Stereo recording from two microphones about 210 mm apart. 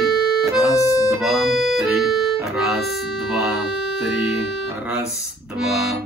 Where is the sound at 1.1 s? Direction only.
Centre (ahead or behind).